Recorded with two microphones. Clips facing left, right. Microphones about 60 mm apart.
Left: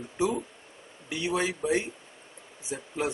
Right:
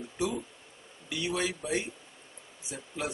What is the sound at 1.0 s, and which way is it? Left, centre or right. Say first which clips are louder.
A man's voice: left 3 dB; left.